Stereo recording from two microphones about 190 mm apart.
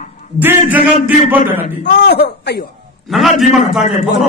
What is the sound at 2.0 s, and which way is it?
Speech, 60° left (ahead or behind).